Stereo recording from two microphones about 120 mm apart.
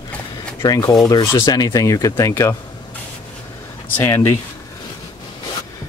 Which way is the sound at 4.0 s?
20° left (ahead or behind).